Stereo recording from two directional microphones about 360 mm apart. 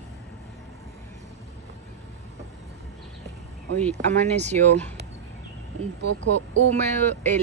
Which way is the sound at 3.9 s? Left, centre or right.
Centre.